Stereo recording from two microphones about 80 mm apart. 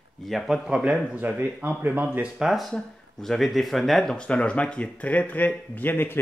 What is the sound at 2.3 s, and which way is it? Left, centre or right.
Speech, centre.